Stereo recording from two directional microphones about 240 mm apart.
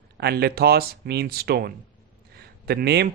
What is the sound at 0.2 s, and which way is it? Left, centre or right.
A man's voice, right.